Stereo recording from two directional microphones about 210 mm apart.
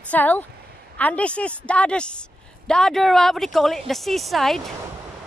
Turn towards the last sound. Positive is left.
turn(degrees=0)  # may be behind; listen again after turning